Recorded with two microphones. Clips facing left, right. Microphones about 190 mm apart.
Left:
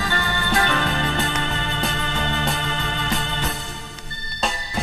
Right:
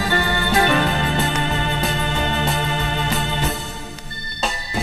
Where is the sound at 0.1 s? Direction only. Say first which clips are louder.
Right 5 dB; 15° right (ahead or behind).